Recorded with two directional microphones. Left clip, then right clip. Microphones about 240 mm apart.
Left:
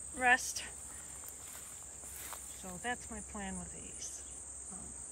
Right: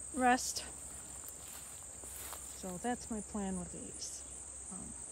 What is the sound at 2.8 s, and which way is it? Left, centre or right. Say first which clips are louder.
Speech: even; centre.